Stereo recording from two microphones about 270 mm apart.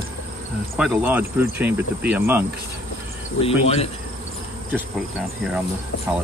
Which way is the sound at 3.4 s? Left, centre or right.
Left.